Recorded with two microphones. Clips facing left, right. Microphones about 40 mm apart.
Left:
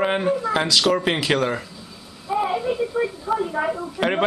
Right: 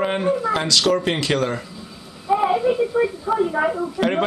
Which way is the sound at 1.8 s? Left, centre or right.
Centre.